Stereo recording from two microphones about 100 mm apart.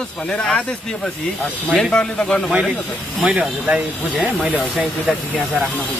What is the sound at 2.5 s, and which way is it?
Speech, 5° right (ahead or behind).